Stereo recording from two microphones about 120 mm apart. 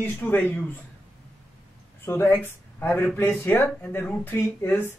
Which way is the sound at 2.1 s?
20° left (ahead or behind).